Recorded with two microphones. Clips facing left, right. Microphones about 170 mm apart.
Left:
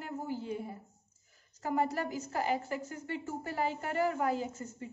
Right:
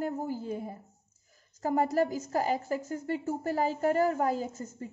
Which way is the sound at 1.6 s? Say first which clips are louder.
Right 5 dB; 40° right (ahead or behind).